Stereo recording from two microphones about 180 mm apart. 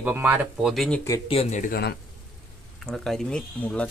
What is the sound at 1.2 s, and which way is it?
Speech, 35° left (ahead or behind).